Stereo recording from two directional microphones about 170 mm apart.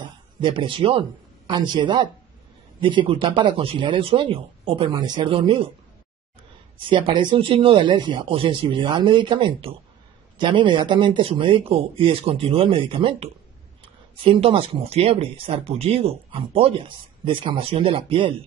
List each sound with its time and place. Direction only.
0.4 s speech: 30° right (ahead or behind)
6.9 s speech: 30° right (ahead or behind)